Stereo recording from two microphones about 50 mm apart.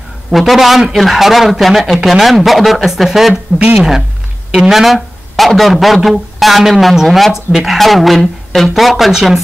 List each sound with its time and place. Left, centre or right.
0.3 s speech: centre
3.5 s speech: right
4.5 s a man's voice: centre